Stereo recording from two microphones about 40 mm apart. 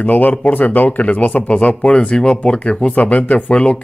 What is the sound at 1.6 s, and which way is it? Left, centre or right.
Speech, left.